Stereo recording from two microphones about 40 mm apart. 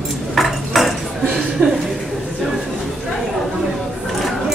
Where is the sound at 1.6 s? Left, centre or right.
Right.